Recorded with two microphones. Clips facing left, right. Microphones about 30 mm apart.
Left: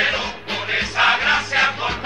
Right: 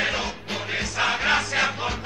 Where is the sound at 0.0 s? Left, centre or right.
Left.